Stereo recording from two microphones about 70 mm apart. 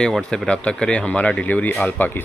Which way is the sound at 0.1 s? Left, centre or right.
Centre.